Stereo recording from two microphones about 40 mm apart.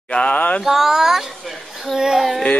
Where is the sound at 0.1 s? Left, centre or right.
Left.